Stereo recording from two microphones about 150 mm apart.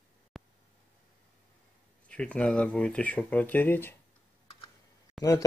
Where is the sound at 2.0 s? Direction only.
10° left (ahead or behind).